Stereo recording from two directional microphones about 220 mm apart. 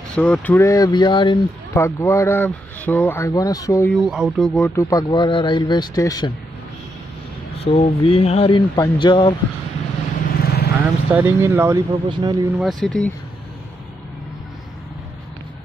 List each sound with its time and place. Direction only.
0.1 s speech: 5° left (ahead or behind)
3.9 s speech: centre (ahead or behind); by 6.3 s 15° left (ahead or behind)
7.5 s speech: 25° left (ahead or behind)
10.4 s vehicle: 45° left (ahead or behind)
10.8 s speech: 5° right (ahead or behind)
12.5 s speech: centre (ahead or behind)